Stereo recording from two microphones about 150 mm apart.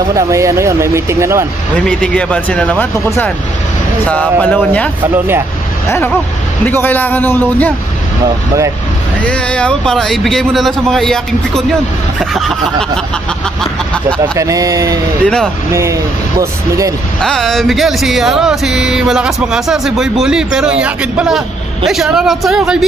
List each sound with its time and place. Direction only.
0.1 s speech: 20° right (ahead or behind)
1.9 s speech: 5° left (ahead or behind)
5.1 s a man's voice: 15° right (ahead or behind)
6.6 s speech: 10° left (ahead or behind)
9.2 s music: 5° left (ahead or behind)
14.2 s speech: 20° right (ahead or behind)
15.2 s music: 5° left (ahead or behind)
15.7 s speech: 20° right (ahead or behind)
17.2 s music: 5° left (ahead or behind)
20.8 s a man's voice: 5° right (ahead or behind)
21.8 s music: centre (ahead or behind)